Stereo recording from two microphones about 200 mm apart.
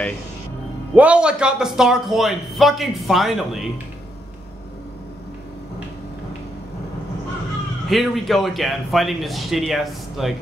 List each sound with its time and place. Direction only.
0.9 s a man's voice: 5° right (ahead or behind)
7.9 s a man's voice: centre (ahead or behind)